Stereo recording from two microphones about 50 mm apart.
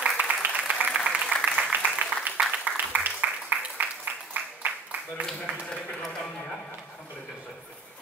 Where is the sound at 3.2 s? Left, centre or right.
Right.